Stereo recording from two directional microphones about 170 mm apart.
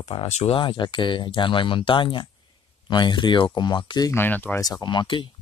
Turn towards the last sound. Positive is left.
turn(degrees=30)  # may be behind; listen again after turning